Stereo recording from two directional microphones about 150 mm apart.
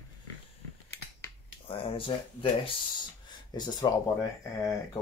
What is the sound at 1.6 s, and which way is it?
Speech, 35° left (ahead or behind).